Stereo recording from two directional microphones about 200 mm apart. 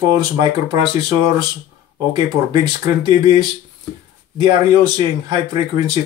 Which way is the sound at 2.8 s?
20° right (ahead or behind).